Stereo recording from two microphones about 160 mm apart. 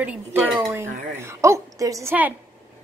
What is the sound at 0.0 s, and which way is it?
A woman's voice, 10° right (ahead or behind).